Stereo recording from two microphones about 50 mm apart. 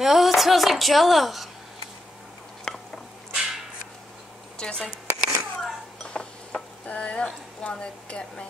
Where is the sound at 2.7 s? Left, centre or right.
Centre.